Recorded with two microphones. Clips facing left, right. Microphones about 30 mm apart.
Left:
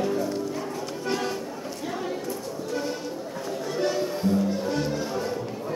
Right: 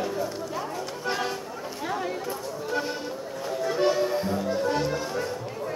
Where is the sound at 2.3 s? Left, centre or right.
Right.